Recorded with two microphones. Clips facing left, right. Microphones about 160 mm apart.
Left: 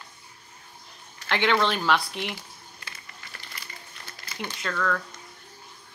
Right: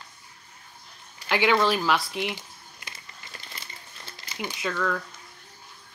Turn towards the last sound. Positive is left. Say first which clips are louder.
# even
turn(degrees=-10)  # may be behind; listen again after turning